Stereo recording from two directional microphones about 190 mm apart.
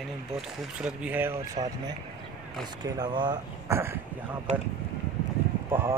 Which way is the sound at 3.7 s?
10° right (ahead or behind).